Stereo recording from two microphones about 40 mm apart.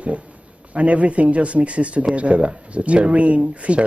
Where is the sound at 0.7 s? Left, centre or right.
Right.